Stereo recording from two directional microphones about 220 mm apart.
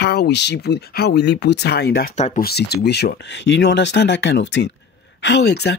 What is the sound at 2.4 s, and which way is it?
Speech, 45° left (ahead or behind).